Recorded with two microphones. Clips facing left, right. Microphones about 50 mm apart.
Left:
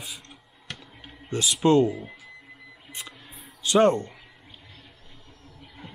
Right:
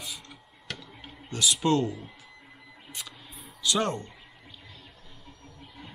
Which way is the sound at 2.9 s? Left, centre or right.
Left.